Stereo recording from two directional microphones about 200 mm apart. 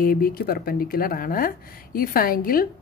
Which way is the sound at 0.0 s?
45° left (ahead or behind).